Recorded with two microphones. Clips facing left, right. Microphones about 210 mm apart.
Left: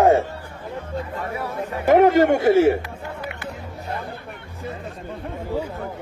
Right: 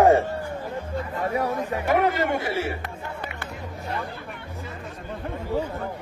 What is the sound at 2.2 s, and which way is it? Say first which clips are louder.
Speech: left 9 dB; 45° left (ahead or behind).